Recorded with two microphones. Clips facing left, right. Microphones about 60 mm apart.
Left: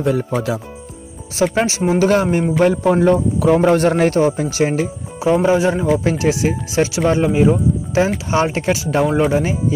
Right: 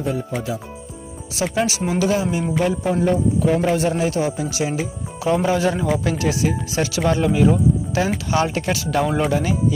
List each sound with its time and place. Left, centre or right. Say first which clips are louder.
0.0 s speech: left 6 dB; left
1.3 s speech: left 5 dB; left
2.6 s speech: left 7 dB; left
3.6 s a man's voice: left 6 dB; left
5.2 s speech: left 4 dB; left